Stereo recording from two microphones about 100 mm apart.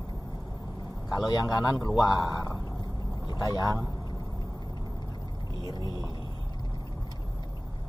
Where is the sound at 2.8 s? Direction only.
40° left (ahead or behind).